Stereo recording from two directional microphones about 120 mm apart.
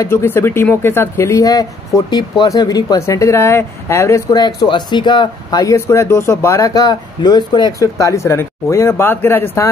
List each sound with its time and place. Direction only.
0.0 s speech: 20° left (ahead or behind)
4.3 s speech: 35° left (ahead or behind); by 9.7 s 20° left (ahead or behind)